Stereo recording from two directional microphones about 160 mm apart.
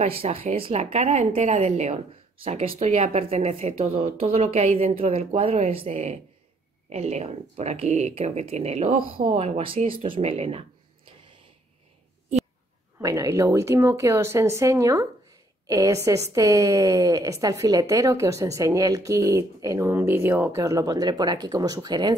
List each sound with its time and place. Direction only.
0.0 s speech: 40° right (ahead or behind)
13.0 s a woman's voice: 20° right (ahead or behind)